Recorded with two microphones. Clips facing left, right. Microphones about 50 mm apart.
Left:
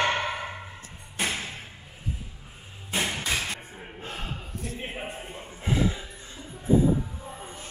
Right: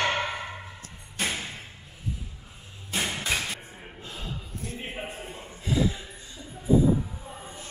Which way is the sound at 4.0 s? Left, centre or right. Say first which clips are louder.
Left 2 dB; left.